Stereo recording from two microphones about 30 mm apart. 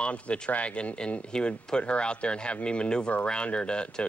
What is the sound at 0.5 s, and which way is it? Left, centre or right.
Speech, left.